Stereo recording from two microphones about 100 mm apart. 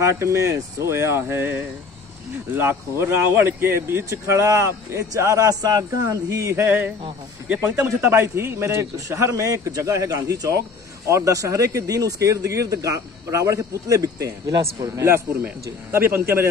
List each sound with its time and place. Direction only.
0.0 s a man's voice: 30° right (ahead or behind)
6.5 s speech: 20° right (ahead or behind)
8.0 s a man's voice: 25° right (ahead or behind)